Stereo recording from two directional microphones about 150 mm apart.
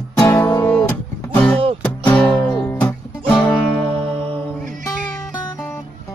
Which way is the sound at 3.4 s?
10° left (ahead or behind).